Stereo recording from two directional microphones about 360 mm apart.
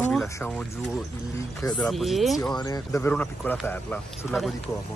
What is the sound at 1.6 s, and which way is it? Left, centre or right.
Speech, centre.